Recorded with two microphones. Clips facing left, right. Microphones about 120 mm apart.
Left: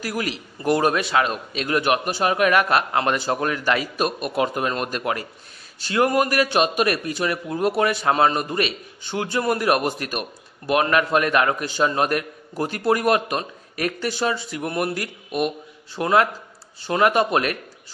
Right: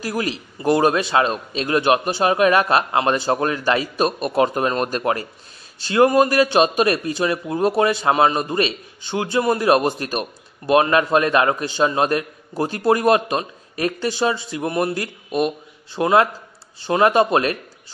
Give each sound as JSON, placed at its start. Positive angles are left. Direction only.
{"t": 0.0, "sound": "a man's voice", "side_deg": -30}